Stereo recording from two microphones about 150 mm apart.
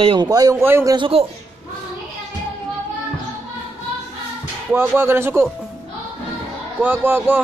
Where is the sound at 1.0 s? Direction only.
40° right (ahead or behind).